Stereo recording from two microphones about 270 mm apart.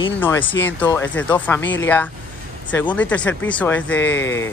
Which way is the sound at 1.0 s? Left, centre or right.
Left.